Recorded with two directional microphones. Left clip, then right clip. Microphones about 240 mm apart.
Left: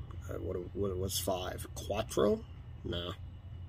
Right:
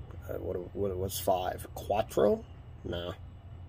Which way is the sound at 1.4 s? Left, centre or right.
Centre.